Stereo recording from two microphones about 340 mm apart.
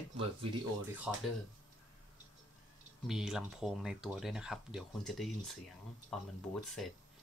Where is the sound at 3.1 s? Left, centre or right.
Centre.